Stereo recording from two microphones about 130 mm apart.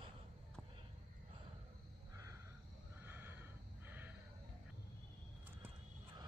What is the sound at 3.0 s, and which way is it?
Snort, 15° right (ahead or behind).